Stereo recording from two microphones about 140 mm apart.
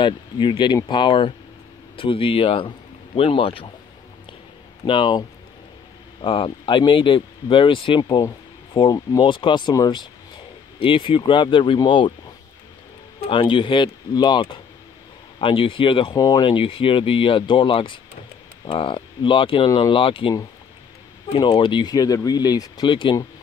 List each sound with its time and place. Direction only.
0.0 s speech: 35° left (ahead or behind)
4.8 s speech: 35° left (ahead or behind)
6.2 s speech: 40° left (ahead or behind)
13.3 s speech: 35° left (ahead or behind)